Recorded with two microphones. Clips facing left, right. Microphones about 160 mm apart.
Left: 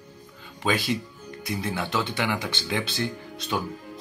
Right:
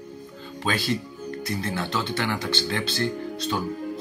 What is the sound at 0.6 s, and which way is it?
Speech, 10° left (ahead or behind).